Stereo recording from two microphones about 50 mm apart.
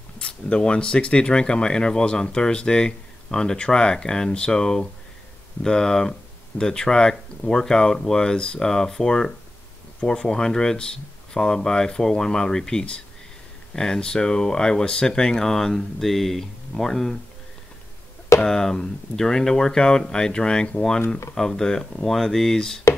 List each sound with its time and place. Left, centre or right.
0.2 s speech: centre
18.5 s speech: centre
21.4 s speech: centre